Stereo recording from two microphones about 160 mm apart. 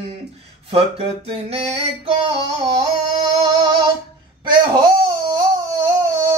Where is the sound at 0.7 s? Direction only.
40° right (ahead or behind).